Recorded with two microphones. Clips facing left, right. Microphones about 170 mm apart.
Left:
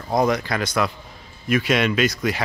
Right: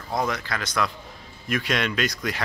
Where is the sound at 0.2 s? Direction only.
15° left (ahead or behind).